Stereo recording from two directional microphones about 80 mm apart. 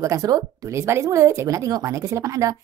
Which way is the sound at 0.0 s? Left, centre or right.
Right.